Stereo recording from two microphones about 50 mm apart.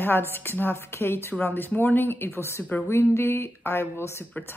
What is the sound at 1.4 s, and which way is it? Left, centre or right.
Speech, left.